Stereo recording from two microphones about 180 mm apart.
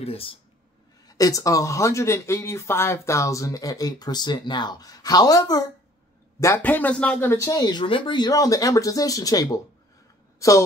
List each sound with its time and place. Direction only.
0.0 s speech: 30° left (ahead or behind)
1.0 s a woman's voice: 20° left (ahead or behind)